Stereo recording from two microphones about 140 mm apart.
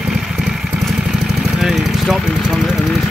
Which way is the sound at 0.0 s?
5° right (ahead or behind).